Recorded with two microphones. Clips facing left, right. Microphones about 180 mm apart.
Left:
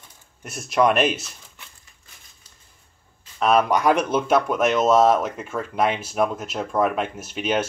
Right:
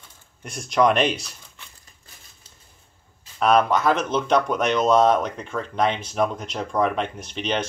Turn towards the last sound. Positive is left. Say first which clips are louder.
# left 2 dB
turn(degrees=5)  # may be behind; listen again after turning